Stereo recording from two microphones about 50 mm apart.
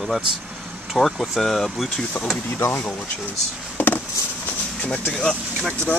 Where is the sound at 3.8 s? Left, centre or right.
Left.